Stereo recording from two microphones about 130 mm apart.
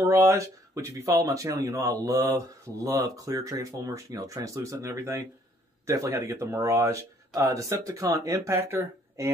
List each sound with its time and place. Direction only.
0.0 s speech: 20° right (ahead or behind)